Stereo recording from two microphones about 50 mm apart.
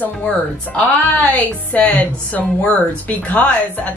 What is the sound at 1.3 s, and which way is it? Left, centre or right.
A woman's voice, left.